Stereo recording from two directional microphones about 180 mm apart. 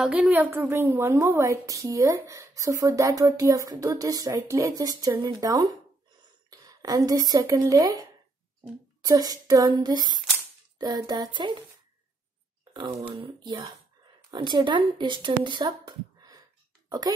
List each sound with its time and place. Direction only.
0.0 s a woman's voice: 5° right (ahead or behind)
9.0 s child singing: 20° right (ahead or behind)
12.7 s speech: 25° right (ahead or behind)
16.2 s a sound: 20° right (ahead or behind)